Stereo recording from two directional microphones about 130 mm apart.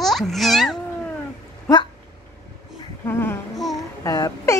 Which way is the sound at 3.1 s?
15° left (ahead or behind).